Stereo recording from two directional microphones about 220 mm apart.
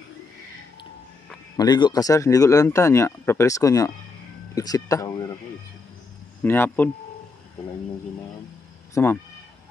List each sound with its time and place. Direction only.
1.6 s speech: 20° left (ahead or behind)
6.4 s speech: 10° left (ahead or behind)
8.9 s speech: 10° left (ahead or behind)